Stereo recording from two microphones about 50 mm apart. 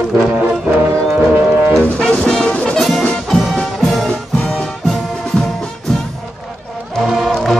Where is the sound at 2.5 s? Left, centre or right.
Left.